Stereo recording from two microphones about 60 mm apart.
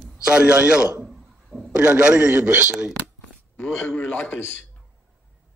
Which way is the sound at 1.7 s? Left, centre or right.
Centre.